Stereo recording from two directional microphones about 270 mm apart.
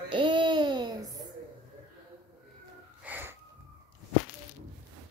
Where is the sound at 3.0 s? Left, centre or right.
Centre.